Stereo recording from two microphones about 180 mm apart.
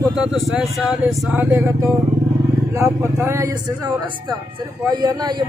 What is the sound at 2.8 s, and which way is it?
Speech, 15° right (ahead or behind).